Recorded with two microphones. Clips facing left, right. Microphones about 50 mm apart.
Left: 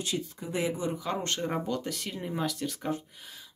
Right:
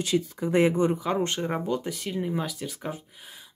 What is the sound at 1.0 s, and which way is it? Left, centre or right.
Speech, centre.